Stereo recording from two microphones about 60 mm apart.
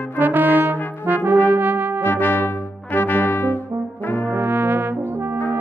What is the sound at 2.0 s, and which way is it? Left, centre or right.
Music, left.